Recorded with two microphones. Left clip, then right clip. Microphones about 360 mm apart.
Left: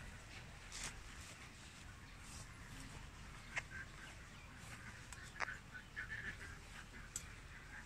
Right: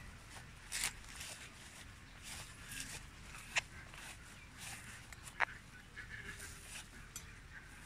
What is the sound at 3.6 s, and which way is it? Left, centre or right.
Duck, right.